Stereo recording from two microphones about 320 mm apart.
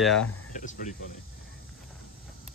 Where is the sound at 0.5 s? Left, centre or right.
Left.